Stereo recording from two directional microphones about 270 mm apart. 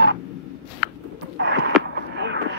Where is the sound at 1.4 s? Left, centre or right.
Right.